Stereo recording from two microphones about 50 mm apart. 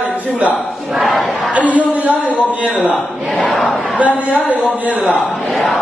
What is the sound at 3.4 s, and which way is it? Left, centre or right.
Battle cry, centre.